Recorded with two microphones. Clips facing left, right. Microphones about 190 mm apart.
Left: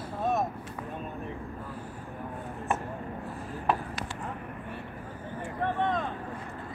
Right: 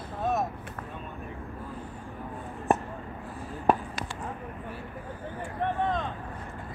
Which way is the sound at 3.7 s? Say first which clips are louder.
Right 5 dB; 45° right (ahead or behind).